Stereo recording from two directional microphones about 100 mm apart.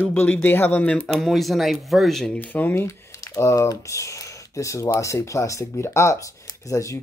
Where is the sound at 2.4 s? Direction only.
20° left (ahead or behind).